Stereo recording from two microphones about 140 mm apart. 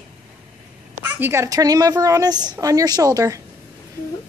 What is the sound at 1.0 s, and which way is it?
A woman's voice, 20° right (ahead or behind).